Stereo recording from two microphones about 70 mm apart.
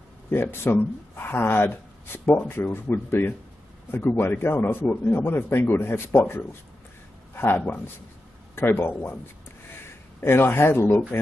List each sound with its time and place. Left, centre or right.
0.3 s speech: left
10.2 s speech: left